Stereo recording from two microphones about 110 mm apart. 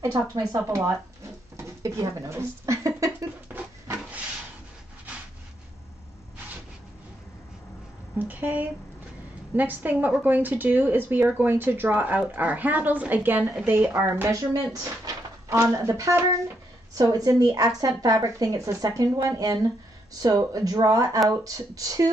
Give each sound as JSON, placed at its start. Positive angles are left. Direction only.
{"t": 0.1, "sound": "speech", "side_deg": -40}
{"t": 0.6, "sound": "speech", "side_deg": -25}
{"t": 1.6, "sound": "a sound", "side_deg": -25}
{"t": 3.5, "sound": "a sound", "side_deg": -15}
{"t": 8.3, "sound": "speech", "side_deg": -15}
{"t": 14.1, "sound": "speech", "side_deg": -30}